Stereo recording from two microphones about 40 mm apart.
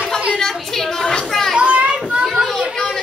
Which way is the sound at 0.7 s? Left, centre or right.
Centre.